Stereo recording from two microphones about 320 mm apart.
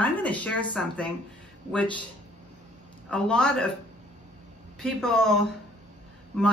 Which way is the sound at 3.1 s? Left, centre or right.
Centre.